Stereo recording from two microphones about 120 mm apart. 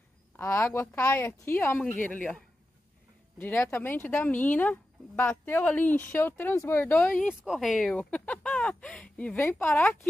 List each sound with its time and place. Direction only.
0.4 s a woman's voice: 20° left (ahead or behind)
7.2 s speech: 5° right (ahead or behind)
9.4 s a woman's voice: 20° left (ahead or behind)